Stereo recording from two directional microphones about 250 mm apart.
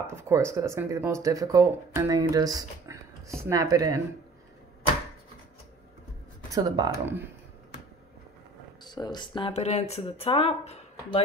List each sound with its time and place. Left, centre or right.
0.0 s speech: centre
6.5 s speech: centre
8.8 s speech: centre